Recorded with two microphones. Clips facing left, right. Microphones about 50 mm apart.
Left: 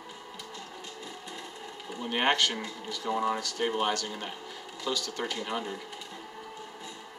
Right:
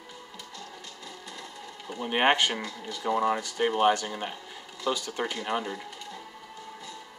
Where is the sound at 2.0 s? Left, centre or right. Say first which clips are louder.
Right 3 dB; centre.